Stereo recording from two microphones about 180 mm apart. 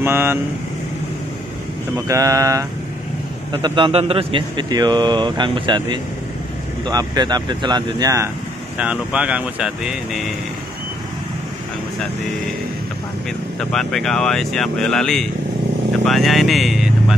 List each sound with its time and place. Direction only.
0.0 s speech: 15° right (ahead or behind)
2.0 s a man's voice: 20° right (ahead or behind)
3.6 s a man's voice: 30° right (ahead or behind)
8.7 s speech: 5° right (ahead or behind)
13.6 s speech: 5° left (ahead or behind)